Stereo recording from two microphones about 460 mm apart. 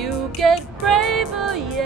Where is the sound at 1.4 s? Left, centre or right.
Centre.